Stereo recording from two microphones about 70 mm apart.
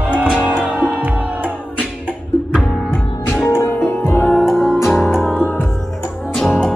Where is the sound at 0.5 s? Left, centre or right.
Centre.